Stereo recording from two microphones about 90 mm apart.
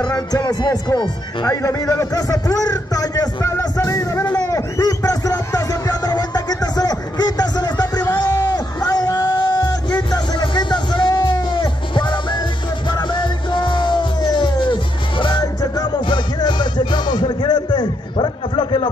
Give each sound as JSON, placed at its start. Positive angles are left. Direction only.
{"t": 0.0, "sound": "speech", "side_deg": 50}
{"t": 1.5, "sound": "a man's voice", "side_deg": 35}
{"t": 4.4, "sound": "music", "side_deg": 35}
{"t": 15.4, "sound": "music", "side_deg": 45}